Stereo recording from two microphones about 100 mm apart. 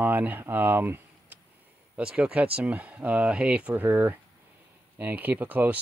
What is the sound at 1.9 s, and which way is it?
Speech, 10° right (ahead or behind).